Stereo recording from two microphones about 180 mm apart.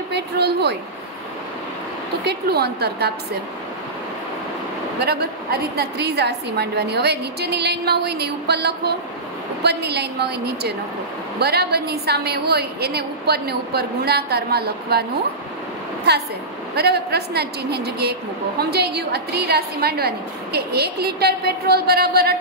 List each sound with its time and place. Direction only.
0.1 s a woman's voice: 65° right (ahead or behind)
2.2 s a woman's voice: 65° right (ahead or behind)
5.0 s a woman's voice: 65° right (ahead or behind)
16.7 s a woman's voice: 65° right (ahead or behind)